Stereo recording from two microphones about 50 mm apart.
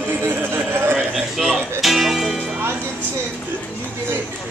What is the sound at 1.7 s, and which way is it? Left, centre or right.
Speech, centre.